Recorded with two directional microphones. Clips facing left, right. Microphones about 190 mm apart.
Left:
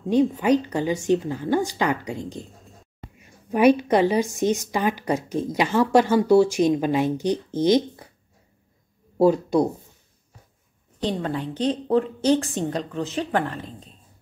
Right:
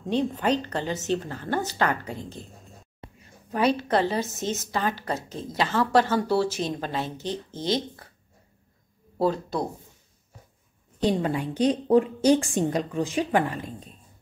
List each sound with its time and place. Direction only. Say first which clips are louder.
0.1 s a woman's voice: left 5 dB; 10° left (ahead or behind)
9.2 s a woman's voice: left 7 dB; 15° left (ahead or behind)
11.0 s a woman's voice: right 2 dB; 10° right (ahead or behind)